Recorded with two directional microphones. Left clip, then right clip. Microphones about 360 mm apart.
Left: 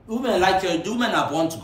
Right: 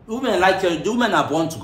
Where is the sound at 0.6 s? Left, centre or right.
Centre.